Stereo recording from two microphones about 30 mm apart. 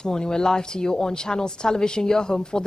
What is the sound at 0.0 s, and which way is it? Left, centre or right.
Speech, left.